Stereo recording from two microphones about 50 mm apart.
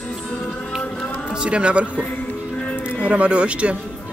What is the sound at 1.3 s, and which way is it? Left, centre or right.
Speech, right.